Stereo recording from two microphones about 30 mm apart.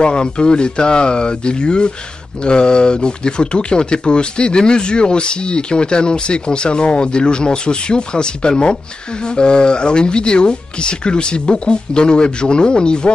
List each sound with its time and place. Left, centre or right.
0.0 s speech: left